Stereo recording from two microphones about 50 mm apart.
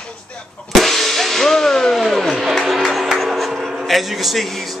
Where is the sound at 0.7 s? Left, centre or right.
Centre.